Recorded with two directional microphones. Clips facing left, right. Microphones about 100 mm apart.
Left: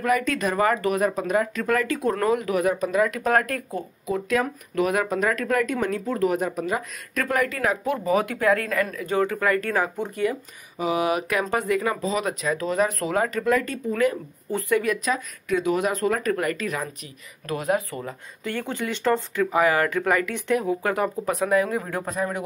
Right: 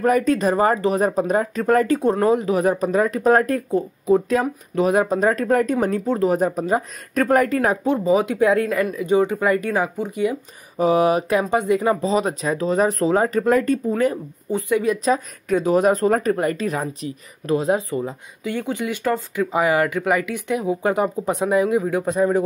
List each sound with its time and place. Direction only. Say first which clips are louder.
0.0 s speech: right 5 dB; 35° right (ahead or behind); by 10.3 s 10° right (ahead or behind)
10.8 s speech: right 6 dB; 35° right (ahead or behind)
11.4 s speech: right 5 dB; 20° right (ahead or behind); by 14.1 s 35° right (ahead or behind)
14.5 s speech: right 3 dB; 15° right (ahead or behind)
14.9 s speech: right 5 dB; 35° right (ahead or behind)
17.9 s speech: right 8 dB; 15° right (ahead or behind)
22.1 s speech: right 9 dB; 25° right (ahead or behind)